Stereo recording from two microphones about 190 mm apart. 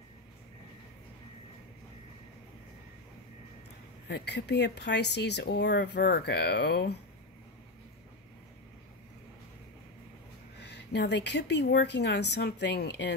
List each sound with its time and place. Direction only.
4.1 s speech: 60° left (ahead or behind)
10.6 s speech: 60° left (ahead or behind)